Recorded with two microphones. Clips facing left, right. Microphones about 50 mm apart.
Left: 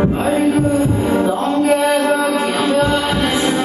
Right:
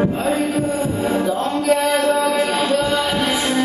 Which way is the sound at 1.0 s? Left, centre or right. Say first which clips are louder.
Left 3 dB; left.